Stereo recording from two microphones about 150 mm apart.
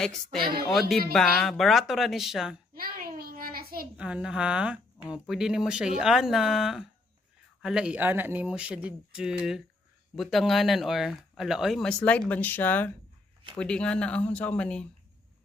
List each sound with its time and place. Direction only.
0.0 s speech: centre (ahead or behind)
0.4 s speech: 85° right
0.7 s speech: centre (ahead or behind)
2.7 s a sound: 80° right
3.9 s speech: 5° right (ahead or behind)